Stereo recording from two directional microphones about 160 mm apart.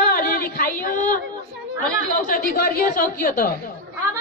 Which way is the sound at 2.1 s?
60° left (ahead or behind).